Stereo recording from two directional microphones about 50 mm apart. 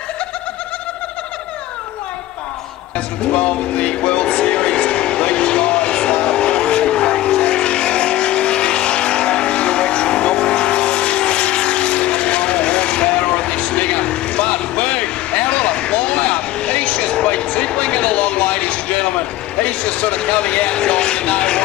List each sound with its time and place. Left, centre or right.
3.3 s vehicle: left
15.4 s a sound: left
19.6 s speech: left